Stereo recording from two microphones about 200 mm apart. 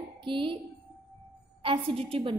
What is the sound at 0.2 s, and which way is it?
Speech, 25° right (ahead or behind).